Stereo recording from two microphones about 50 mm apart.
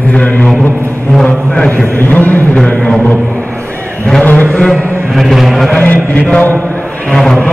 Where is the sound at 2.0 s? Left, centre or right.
Left.